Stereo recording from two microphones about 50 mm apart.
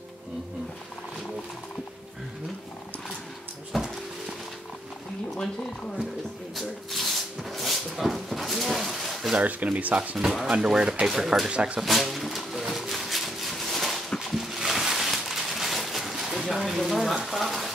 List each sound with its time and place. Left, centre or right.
3.7 s music: centre
6.5 s a sound: centre
9.6 s speech: right
10.1 s speech: centre
10.5 s speech: centre
11.8 s a sound: centre
17.3 s speech: centre